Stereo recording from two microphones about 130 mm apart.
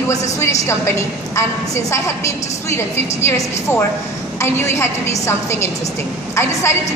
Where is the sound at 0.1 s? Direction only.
60° left (ahead or behind).